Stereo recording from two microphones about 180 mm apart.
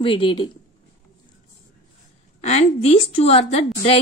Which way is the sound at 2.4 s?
35° left (ahead or behind).